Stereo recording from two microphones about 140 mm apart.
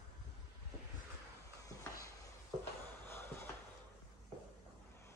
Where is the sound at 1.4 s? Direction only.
25° left (ahead or behind).